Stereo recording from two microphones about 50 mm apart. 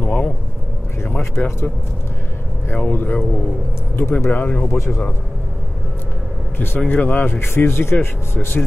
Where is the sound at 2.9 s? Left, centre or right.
Left.